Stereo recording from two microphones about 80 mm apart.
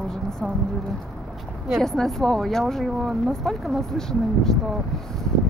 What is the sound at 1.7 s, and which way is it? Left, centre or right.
Speech, centre.